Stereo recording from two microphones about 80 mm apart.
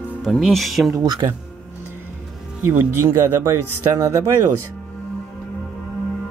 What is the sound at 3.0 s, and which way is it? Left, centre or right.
Speech, right.